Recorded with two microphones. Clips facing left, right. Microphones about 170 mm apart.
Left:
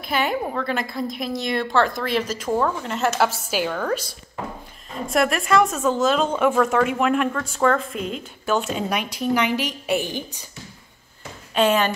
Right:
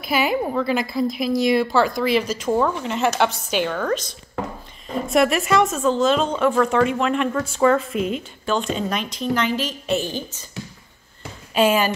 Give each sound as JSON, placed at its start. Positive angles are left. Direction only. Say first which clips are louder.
{"t": 0.1, "sound": "a woman's voice", "louder": "right 3 dB", "side_deg": -5}
{"t": 5.0, "sound": "a woman's voice", "louder": "right 2 dB", "side_deg": 0}
{"t": 11.5, "sound": "a woman's voice", "louder": "right 1 dB", "side_deg": -5}